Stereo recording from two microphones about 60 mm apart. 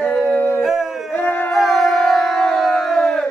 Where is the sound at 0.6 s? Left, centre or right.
Centre.